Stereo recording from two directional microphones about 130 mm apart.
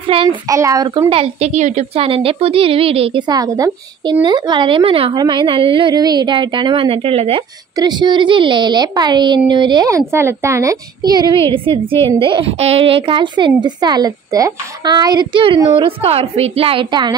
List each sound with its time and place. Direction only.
0.1 s a woman's voice: 45° right (ahead or behind)
0.5 s a woman's voice: 25° right (ahead or behind); by 2.0 s 60° right (ahead or behind)
2.0 s a woman's voice: 45° right (ahead or behind)
5.1 s a woman's voice: 35° right (ahead or behind)
7.7 s a woman's voice: 30° right (ahead or behind)
9.8 s a woman's voice: 20° right (ahead or behind); by 17.1 s 40° right (ahead or behind)